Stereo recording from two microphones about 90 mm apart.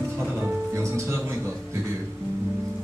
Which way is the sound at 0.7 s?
30° right (ahead or behind).